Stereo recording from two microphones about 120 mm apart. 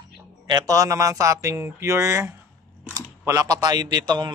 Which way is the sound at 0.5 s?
30° right (ahead or behind).